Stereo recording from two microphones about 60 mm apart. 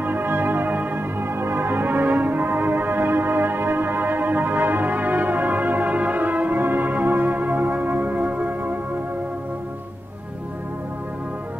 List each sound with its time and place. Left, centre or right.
0.0 s music: right